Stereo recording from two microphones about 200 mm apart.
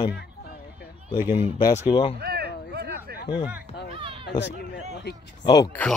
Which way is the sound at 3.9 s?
25° right (ahead or behind).